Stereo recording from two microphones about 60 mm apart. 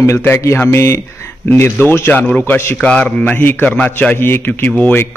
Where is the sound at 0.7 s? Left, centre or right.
Left.